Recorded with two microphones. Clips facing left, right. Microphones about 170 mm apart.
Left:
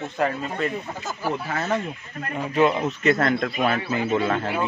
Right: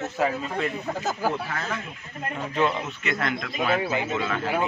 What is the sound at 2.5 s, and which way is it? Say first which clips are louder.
Speech: left 5 dB; 15° left (ahead or behind).